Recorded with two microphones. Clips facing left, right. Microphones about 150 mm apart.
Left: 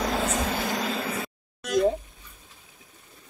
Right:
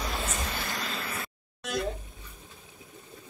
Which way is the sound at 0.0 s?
70° left (ahead or behind).